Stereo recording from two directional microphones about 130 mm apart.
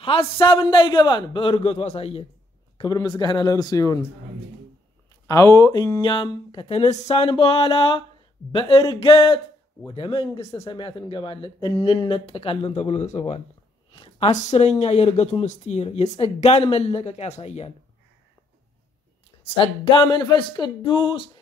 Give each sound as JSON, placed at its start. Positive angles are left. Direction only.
{"t": 0.0, "sound": "speech", "side_deg": 45}
{"t": 2.8, "sound": "speech", "side_deg": 30}
{"t": 5.2, "sound": "speech", "side_deg": 25}
{"t": 6.6, "sound": "speech", "side_deg": 50}
{"t": 7.2, "sound": "speech", "side_deg": 45}
{"t": 19.5, "sound": "speech", "side_deg": 40}